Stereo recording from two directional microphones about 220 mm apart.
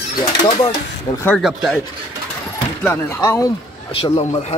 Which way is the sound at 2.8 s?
10° left (ahead or behind).